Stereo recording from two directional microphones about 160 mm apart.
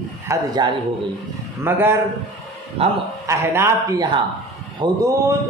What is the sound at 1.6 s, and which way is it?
Speech, 15° right (ahead or behind).